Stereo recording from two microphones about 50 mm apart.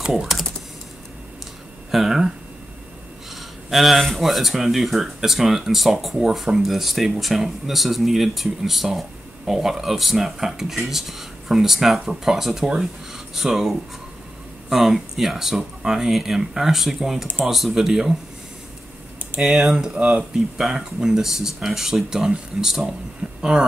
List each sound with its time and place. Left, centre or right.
0.1 s speech: centre
1.9 s a sound: centre
3.3 s speech: centre
19.4 s speech: centre
20.0 s speech: right
20.7 s speech: centre
23.2 s a sound: centre